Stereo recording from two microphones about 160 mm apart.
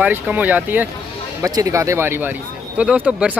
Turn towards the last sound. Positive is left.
turn(degrees=-10)  # may be behind; listen again after turning